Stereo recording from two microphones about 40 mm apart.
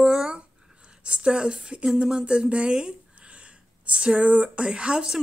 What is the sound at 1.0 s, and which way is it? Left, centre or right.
Speech, right.